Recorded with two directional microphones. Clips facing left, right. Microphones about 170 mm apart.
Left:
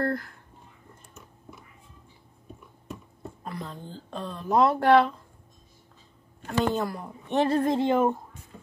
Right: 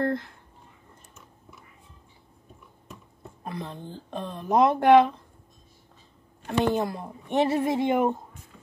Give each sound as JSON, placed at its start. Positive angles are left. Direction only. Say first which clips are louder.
{"t": 0.0, "sound": "a sound", "louder": "right 1 dB", "side_deg": -20}
{"t": 3.4, "sound": "speech", "louder": "right 2 dB", "side_deg": -20}
{"t": 6.4, "sound": "speech", "louder": "right 2 dB", "side_deg": -20}